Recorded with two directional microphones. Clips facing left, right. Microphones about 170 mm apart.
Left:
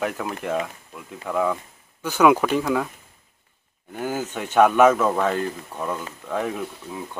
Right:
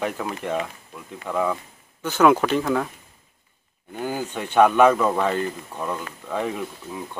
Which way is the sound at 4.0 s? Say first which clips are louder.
Even; 5° left (ahead or behind).